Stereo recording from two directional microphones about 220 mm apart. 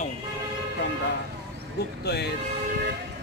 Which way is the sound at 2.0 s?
50° left (ahead or behind).